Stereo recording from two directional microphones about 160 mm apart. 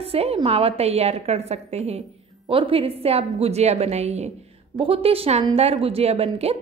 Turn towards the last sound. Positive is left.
turn(degrees=-40)  # may be behind; listen again after turning